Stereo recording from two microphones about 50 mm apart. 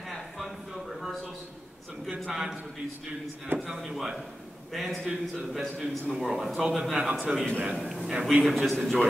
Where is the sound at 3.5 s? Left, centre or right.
Right.